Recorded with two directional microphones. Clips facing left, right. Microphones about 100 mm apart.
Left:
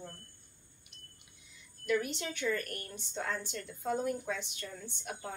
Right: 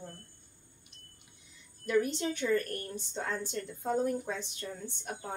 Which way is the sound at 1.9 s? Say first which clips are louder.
Right 4 dB; 30° right (ahead or behind).